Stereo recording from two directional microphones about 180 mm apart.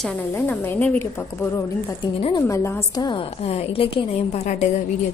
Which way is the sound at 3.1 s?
30° left (ahead or behind).